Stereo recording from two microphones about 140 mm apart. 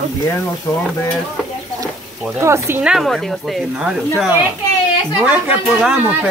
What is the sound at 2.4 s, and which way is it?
Speech, 20° right (ahead or behind).